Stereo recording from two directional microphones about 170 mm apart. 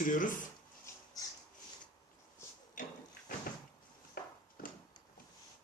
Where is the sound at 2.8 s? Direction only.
50° left (ahead or behind).